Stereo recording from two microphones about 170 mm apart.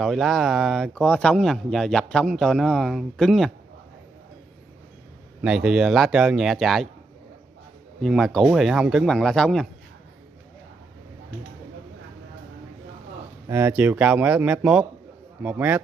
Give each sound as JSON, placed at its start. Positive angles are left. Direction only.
{"t": 0.0, "sound": "speech", "side_deg": 0}
{"t": 5.4, "sound": "speech", "side_deg": -5}
{"t": 8.0, "sound": "speech", "side_deg": 0}
{"t": 13.5, "sound": "speech", "side_deg": -10}